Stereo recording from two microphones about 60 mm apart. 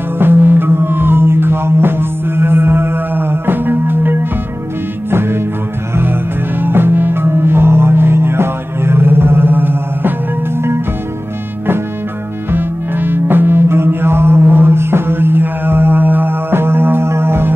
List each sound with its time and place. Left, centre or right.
0.2 s music: right
6.6 s music: right
12.4 s music: right